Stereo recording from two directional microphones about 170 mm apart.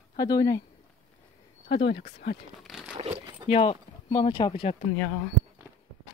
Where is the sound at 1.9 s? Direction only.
70° left (ahead or behind).